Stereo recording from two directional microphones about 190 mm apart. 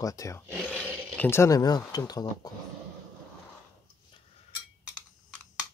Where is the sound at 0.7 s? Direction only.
5° left (ahead or behind).